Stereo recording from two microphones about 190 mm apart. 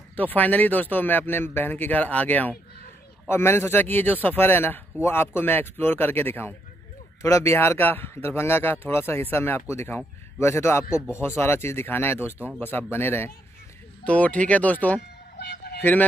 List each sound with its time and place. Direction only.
0.1 s speech: 10° left (ahead or behind)
15.0 s a sound: 60° left (ahead or behind)
15.8 s speech: 10° left (ahead or behind)